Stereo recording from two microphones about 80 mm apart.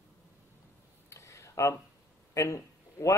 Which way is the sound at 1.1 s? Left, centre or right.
Left.